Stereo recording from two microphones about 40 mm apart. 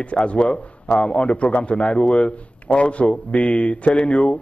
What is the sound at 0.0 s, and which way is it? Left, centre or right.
A man's voice, left.